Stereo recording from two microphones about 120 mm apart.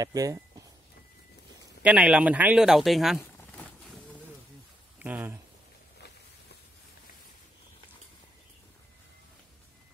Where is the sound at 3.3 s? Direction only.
15° left (ahead or behind).